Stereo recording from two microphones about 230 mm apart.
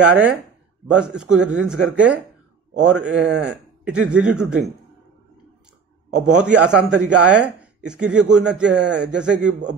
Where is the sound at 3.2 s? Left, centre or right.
Right.